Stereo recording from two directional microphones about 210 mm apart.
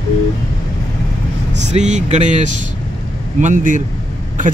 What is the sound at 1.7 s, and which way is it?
Speech, 35° right (ahead or behind).